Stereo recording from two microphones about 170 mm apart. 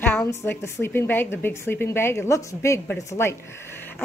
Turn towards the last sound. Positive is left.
turn(degrees=15)  # may be behind; listen again after turning